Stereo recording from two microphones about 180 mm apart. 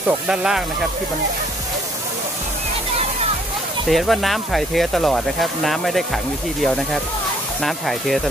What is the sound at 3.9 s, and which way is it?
Speech, centre (ahead or behind).